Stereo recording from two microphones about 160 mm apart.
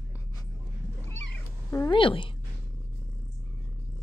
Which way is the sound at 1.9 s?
30° left (ahead or behind).